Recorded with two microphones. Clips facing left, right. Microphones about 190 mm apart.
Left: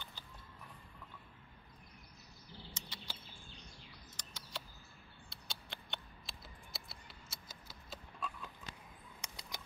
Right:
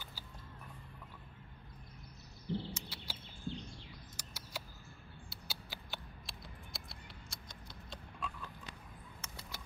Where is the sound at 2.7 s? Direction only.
10° right (ahead or behind).